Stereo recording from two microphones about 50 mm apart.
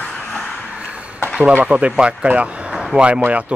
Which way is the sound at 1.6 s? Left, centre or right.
Right.